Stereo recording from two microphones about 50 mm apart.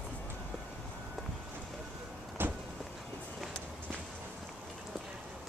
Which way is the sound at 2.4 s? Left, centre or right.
Right.